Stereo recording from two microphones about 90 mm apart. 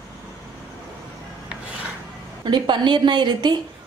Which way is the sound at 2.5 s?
60° right (ahead or behind).